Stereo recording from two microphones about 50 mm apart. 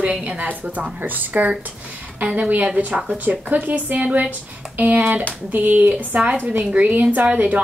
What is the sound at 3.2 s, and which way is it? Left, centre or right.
A woman's voice, right.